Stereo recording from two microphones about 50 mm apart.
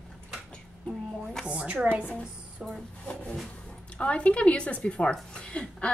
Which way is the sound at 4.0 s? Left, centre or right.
Left.